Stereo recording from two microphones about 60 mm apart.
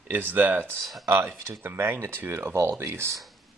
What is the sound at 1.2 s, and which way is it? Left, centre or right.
Speech, centre.